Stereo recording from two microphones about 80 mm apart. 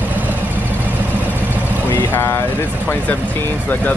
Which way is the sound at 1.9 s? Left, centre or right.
Left.